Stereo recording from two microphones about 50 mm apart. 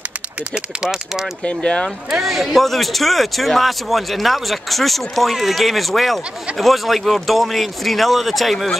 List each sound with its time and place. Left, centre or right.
1.4 s speech: left
2.5 s speech: centre